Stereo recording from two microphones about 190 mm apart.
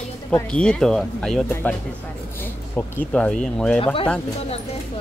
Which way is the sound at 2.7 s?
5° left (ahead or behind).